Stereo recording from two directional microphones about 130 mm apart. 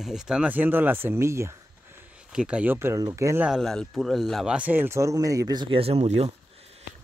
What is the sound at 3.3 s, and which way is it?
Speech, 5° right (ahead or behind).